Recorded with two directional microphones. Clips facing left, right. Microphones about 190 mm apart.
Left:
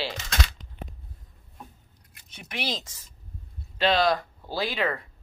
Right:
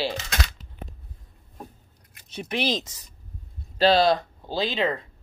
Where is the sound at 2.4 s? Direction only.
25° right (ahead or behind).